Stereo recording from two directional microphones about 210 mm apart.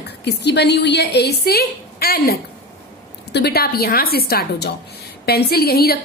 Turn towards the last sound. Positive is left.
turn(degrees=45)  # may be behind; listen again after turning